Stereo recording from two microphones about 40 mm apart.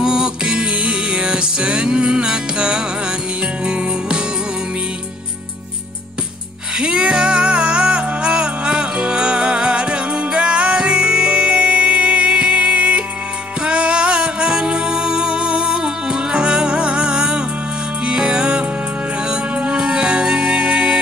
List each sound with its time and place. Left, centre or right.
0.0 s music: centre
6.8 s music: right